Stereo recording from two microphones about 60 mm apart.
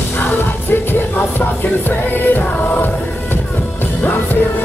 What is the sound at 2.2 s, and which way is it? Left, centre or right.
Choir, left.